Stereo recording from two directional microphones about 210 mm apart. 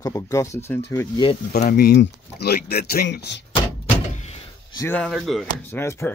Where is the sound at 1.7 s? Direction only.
45° left (ahead or behind).